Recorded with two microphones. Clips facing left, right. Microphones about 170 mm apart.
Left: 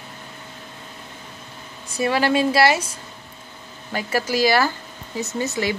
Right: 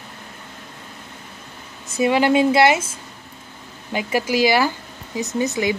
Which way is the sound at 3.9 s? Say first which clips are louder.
Right 2 dB; 15° right (ahead or behind).